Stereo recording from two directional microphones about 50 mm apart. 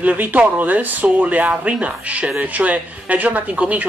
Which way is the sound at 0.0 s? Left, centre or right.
Right.